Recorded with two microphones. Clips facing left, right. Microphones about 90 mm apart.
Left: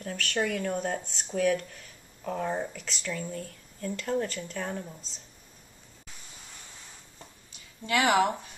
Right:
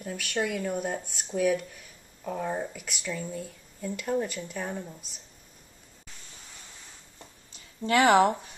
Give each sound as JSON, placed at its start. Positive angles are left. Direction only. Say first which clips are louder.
{"t": 0.0, "sound": "speech", "louder": "even", "side_deg": -5}
{"t": 7.8, "sound": "speech", "louder": "right 4 dB", "side_deg": -35}